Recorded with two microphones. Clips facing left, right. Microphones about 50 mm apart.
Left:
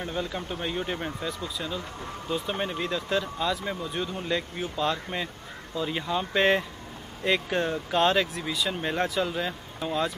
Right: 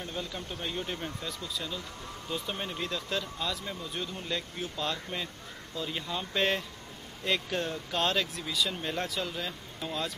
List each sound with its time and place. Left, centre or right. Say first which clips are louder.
0.1 s speech: left 6 dB; centre